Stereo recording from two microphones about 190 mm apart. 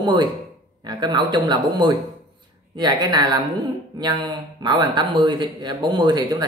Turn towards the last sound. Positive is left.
turn(degrees=-20)  # may be behind; listen again after turning